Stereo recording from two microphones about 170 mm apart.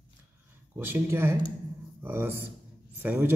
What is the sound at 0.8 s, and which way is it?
A man's voice, 15° right (ahead or behind).